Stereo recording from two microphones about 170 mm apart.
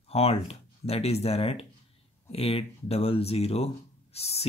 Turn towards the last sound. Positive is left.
turn(degrees=35)  # may be behind; listen again after turning